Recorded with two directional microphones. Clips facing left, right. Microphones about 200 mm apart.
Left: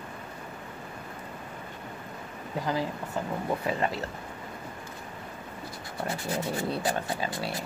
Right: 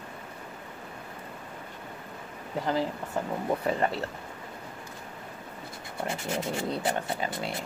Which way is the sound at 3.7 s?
30° right (ahead or behind).